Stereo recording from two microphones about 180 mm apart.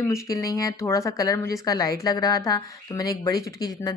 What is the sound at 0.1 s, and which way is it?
A woman's voice, 20° left (ahead or behind).